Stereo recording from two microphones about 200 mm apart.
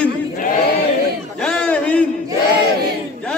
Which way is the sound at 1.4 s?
5° left (ahead or behind).